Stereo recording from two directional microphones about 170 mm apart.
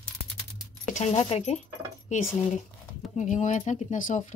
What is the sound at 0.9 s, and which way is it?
Speech, 40° left (ahead or behind).